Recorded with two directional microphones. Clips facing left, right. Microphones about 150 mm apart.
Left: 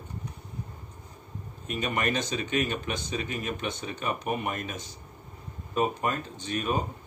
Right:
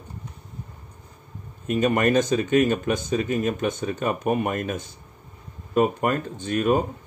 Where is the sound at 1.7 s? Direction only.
45° right (ahead or behind).